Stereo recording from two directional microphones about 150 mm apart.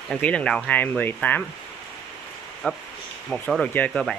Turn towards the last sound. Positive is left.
turn(degrees=5)  # may be behind; listen again after turning